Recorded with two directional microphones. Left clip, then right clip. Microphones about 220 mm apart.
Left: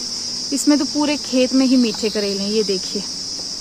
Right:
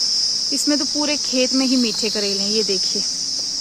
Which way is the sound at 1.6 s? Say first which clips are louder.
Left 2 dB; 15° right (ahead or behind).